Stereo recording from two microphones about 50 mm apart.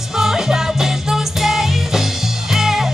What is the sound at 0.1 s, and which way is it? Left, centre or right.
Music, centre.